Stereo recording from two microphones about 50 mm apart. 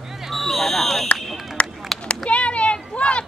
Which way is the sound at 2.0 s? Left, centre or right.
Left.